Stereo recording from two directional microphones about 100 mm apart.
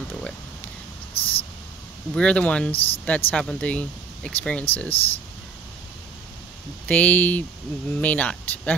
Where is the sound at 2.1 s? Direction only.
10° left (ahead or behind).